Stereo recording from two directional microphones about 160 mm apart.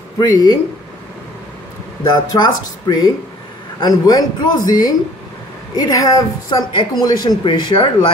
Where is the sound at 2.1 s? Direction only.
25° left (ahead or behind).